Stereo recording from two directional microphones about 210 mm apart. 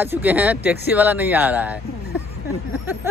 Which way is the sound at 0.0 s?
10° right (ahead or behind).